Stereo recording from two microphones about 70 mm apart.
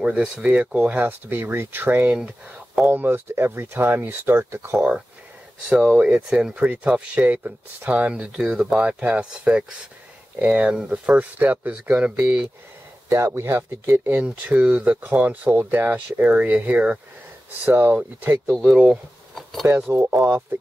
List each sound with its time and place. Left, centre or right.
0.0 s speech: centre; by 2.0 s right
2.0 s speech: centre
2.9 s speech: right
4.4 s speech: right
5.7 s speech: right
13.1 s speech: right
19.9 s speech: right